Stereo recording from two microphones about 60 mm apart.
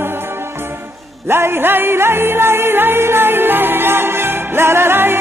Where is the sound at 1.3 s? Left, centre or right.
Right.